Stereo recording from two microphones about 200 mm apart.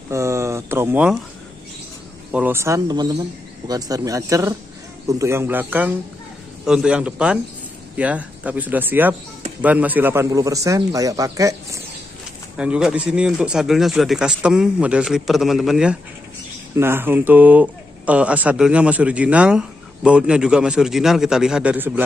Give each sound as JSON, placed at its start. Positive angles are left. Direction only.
{"t": 0.1, "sound": "speech", "side_deg": -15}
{"t": 2.3, "sound": "speech", "side_deg": -10}
{"t": 12.5, "sound": "speech", "side_deg": -5}